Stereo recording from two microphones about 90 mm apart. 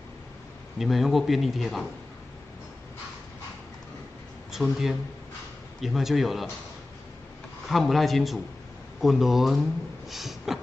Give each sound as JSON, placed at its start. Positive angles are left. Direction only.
{"t": 0.7, "sound": "speech", "side_deg": 0}
{"t": 4.5, "sound": "a man's voice", "side_deg": 0}
{"t": 7.7, "sound": "speech", "side_deg": 0}
{"t": 10.0, "sound": "a sound", "side_deg": 0}